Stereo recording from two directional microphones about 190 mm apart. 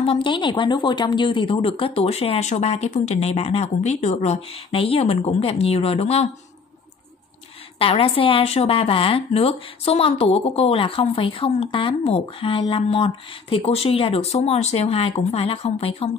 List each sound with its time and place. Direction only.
0.0 s a woman's voice: 30° left (ahead or behind)
7.8 s a woman's voice: 30° left (ahead or behind)